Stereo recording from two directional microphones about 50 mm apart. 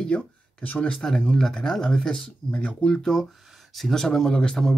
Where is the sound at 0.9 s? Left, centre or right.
Centre.